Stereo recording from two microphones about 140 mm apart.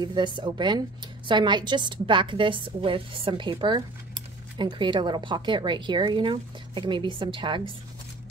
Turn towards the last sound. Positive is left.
turn(degrees=-35)  # may be behind; listen again after turning